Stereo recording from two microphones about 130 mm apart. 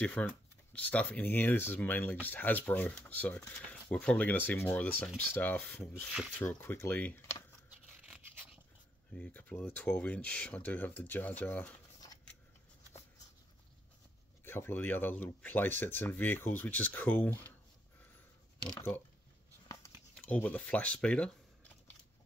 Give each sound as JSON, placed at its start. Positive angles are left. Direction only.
{"t": 0.0, "sound": "speech", "side_deg": 10}
{"t": 6.0, "sound": "speech", "side_deg": -5}
{"t": 6.3, "sound": "speech", "side_deg": 15}
{"t": 7.7, "sound": "a sound", "side_deg": -10}
{"t": 9.1, "sound": "speech", "side_deg": 10}
{"t": 14.4, "sound": "speech", "side_deg": 15}
{"t": 18.8, "sound": "speech", "side_deg": 15}
{"t": 20.2, "sound": "speech", "side_deg": 10}